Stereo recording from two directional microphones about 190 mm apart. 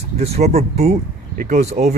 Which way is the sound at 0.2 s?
35° right (ahead or behind).